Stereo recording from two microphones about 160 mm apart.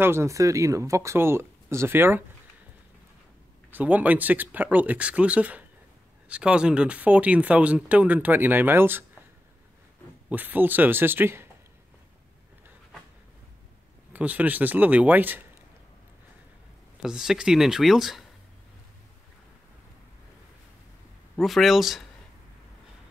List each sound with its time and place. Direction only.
0.0 s speech: 15° right (ahead or behind)
3.7 s speech: 10° right (ahead or behind)
10.3 s speech: 10° right (ahead or behind)
14.1 s speech: 10° right (ahead or behind)
17.0 s speech: 5° right (ahead or behind)
21.4 s speech: centre (ahead or behind)